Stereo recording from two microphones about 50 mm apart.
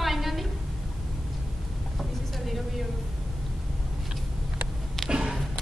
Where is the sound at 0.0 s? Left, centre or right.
Centre.